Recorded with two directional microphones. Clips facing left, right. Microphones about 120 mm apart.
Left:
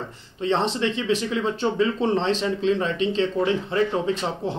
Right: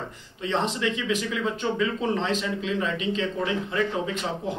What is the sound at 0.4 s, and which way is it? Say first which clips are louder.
Speech: left 4 dB; 30° left (ahead or behind).